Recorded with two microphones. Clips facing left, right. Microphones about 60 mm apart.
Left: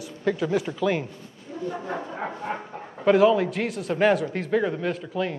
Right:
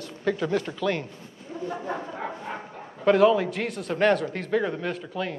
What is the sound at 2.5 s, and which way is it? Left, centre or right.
Dog, left.